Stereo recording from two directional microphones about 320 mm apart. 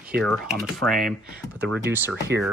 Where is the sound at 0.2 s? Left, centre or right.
Centre.